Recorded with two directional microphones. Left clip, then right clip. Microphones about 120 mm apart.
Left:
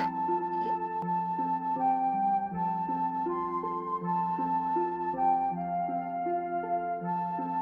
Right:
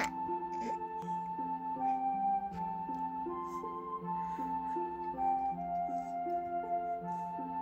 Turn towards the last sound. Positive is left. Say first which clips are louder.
# left 5 dB
turn(degrees=30)  # may be behind; listen again after turning